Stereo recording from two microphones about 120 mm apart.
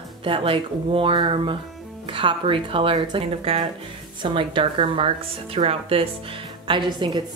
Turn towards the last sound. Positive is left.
turn(degrees=-40)  # may be behind; listen again after turning